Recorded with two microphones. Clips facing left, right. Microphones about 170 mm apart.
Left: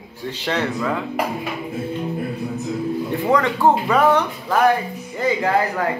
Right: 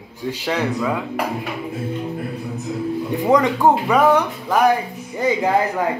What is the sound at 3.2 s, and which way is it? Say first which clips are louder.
Speech: right 2 dB; 15° right (ahead or behind).